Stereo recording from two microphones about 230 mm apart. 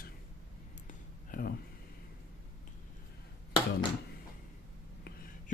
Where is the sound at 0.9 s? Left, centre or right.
Left.